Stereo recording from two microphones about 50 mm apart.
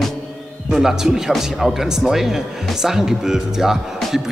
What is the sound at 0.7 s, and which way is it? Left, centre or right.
A man's voice, centre.